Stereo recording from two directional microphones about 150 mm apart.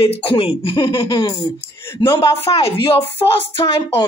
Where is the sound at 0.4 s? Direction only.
35° left (ahead or behind).